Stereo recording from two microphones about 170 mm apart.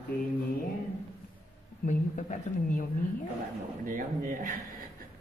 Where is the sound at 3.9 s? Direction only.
55° right (ahead or behind).